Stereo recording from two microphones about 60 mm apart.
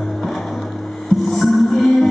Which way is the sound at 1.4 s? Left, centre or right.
Centre.